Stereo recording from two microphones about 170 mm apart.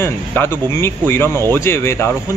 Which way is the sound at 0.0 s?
15° left (ahead or behind).